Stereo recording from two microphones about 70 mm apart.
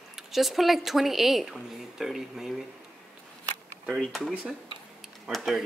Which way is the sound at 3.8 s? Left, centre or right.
Centre.